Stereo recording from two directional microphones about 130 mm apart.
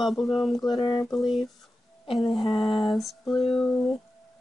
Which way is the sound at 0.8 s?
35° left (ahead or behind).